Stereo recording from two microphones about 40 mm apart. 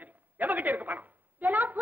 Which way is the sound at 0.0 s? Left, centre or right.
Right.